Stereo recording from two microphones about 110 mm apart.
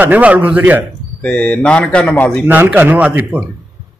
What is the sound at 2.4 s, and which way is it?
Speech, 15° right (ahead or behind).